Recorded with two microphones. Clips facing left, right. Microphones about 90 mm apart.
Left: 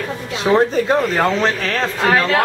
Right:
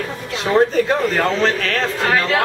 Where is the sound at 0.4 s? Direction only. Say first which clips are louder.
Even; 15° left (ahead or behind).